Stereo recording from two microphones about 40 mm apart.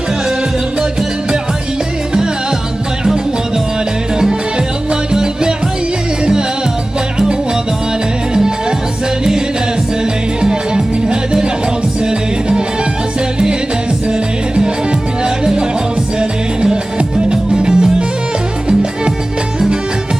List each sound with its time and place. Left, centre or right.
5.1 s music: centre
10.4 s music: centre
14.5 s music: right
17.3 s music: right